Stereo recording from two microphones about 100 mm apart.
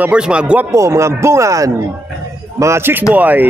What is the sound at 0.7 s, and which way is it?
Speech, 30° right (ahead or behind).